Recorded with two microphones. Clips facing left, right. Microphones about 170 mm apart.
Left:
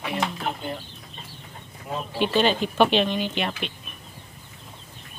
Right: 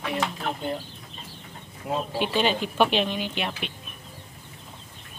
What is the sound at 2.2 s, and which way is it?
A woman's voice, 5° right (ahead or behind).